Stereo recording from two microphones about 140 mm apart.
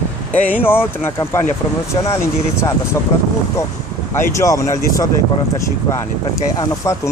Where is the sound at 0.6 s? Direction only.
15° left (ahead or behind).